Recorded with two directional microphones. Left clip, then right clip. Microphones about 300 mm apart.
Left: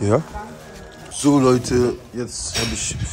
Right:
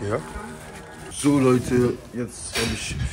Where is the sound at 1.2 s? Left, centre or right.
Centre.